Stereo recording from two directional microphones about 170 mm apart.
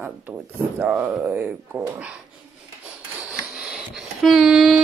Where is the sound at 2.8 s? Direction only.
5° right (ahead or behind).